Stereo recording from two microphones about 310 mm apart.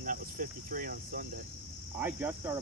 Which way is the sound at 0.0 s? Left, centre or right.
Right.